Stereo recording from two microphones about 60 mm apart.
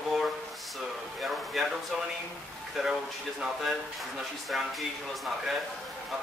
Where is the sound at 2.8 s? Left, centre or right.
Centre.